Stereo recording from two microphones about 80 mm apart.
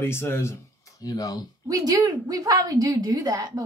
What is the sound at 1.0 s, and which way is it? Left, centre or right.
Speech, left.